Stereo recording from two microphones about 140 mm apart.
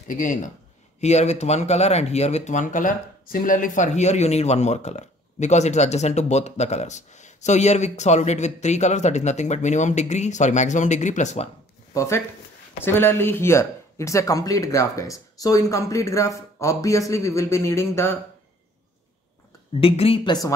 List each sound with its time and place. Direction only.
0.1 s speech: 65° left (ahead or behind)
1.0 s speech: 50° left (ahead or behind)
11.9 s speech: 20° left (ahead or behind)
19.8 s speech: 40° left (ahead or behind)